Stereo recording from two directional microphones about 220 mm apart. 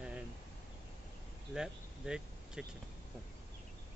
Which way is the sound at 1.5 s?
5° right (ahead or behind).